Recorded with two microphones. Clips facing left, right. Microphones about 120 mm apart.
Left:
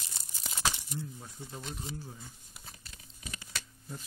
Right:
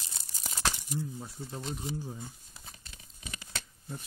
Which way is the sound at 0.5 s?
Centre (ahead or behind).